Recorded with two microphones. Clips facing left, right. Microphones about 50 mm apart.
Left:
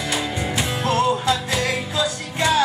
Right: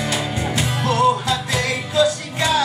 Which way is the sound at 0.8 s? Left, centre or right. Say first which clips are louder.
Right 3 dB; left.